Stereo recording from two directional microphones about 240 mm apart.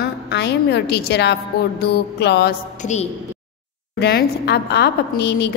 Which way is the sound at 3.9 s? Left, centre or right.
Left.